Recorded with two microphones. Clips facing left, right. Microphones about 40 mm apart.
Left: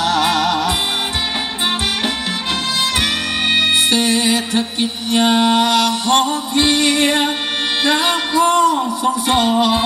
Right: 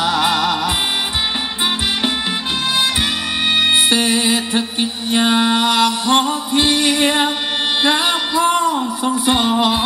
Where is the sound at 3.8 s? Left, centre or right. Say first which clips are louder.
Even; right.